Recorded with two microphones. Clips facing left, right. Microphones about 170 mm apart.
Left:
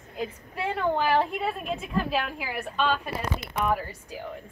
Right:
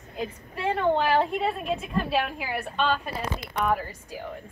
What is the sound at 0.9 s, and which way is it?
A woman's voice, centre (ahead or behind).